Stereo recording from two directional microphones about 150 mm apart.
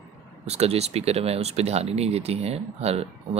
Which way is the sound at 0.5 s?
45° right (ahead or behind).